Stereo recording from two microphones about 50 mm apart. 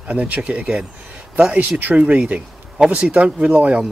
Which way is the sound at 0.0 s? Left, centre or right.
Right.